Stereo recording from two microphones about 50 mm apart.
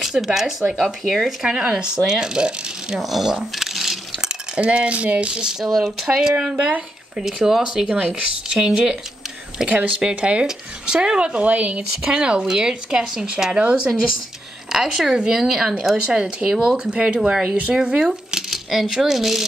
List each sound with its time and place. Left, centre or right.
0.2 s speech: centre
0.8 s speech: centre
1.2 s speech: centre
3.0 s speech: centre
3.5 s a sound: centre
4.6 s speech: right
12.0 s speech: centre
14.7 s speech: centre
18.5 s speech: centre